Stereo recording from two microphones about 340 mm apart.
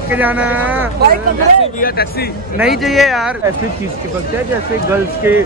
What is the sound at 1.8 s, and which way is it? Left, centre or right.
Speech, left.